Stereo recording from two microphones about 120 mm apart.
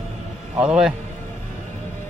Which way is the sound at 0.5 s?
10° right (ahead or behind).